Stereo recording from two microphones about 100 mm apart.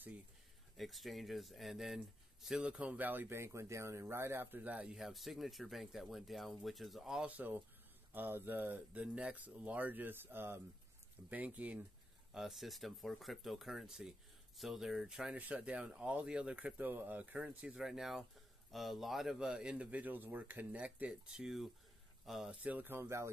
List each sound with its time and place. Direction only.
0.7 s speech: centre (ahead or behind)
4.9 s speech: 5° right (ahead or behind)
12.4 s speech: centre (ahead or behind)
22.6 s speech: 15° right (ahead or behind)